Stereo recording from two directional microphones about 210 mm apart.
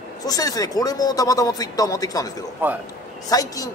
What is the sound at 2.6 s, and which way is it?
Speech, 10° right (ahead or behind).